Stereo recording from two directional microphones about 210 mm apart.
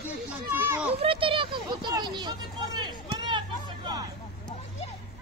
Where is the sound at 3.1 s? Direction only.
20° right (ahead or behind).